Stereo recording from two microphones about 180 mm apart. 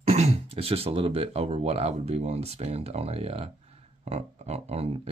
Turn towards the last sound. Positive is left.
turn(degrees=-35)  # may be behind; listen again after turning